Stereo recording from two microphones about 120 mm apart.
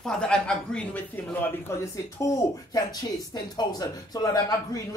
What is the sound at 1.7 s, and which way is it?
Speech, 20° left (ahead or behind).